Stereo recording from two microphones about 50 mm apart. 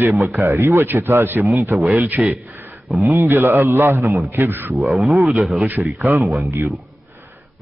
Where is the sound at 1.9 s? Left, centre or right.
Right.